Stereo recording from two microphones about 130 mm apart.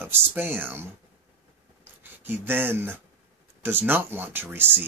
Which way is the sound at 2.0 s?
15° right (ahead or behind).